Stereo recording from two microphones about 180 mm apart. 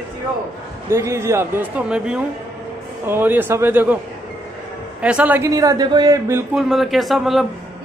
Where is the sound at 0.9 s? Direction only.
15° right (ahead or behind).